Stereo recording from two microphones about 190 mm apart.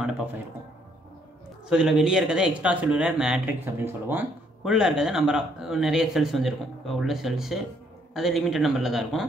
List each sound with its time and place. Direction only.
1.7 s speech: 5° right (ahead or behind)